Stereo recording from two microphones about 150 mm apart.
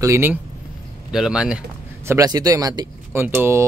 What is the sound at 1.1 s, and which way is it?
Speech, 5° right (ahead or behind).